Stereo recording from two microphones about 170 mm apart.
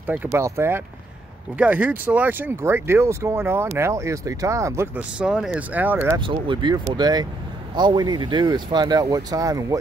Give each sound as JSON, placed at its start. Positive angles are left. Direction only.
{"t": 0.0, "sound": "speech", "side_deg": -10}
{"t": 5.2, "sound": "speech", "side_deg": -5}
{"t": 6.1, "sound": "speech", "side_deg": -30}